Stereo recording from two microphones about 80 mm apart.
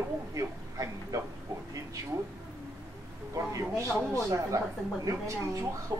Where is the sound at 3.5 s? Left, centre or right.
Right.